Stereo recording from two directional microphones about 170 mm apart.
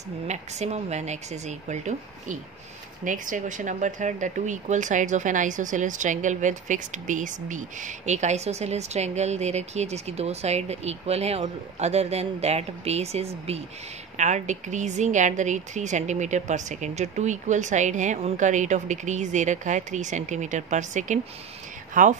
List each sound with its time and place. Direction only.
0.3 s a woman's voice: 40° right (ahead or behind)